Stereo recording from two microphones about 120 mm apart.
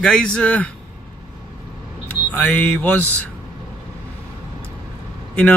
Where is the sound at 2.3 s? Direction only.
15° left (ahead or behind).